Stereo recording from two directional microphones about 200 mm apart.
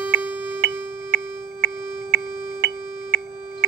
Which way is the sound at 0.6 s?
55° right (ahead or behind).